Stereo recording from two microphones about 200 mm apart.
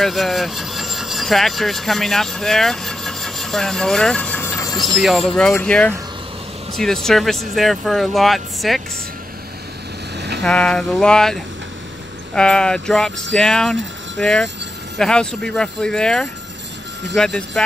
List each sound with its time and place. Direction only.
0.0 s speech: centre (ahead or behind)
4.9 s speech: centre (ahead or behind)
10.1 s vehicle: 55° right (ahead or behind)
10.4 s speech: 5° left (ahead or behind)